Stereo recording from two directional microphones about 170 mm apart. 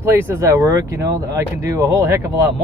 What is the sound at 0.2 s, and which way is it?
Speech, 15° right (ahead or behind).